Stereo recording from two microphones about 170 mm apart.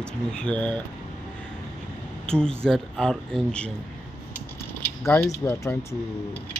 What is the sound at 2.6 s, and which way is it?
Speech, 5° left (ahead or behind).